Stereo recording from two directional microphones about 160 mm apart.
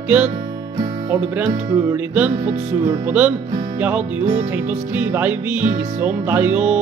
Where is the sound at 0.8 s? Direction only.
25° right (ahead or behind).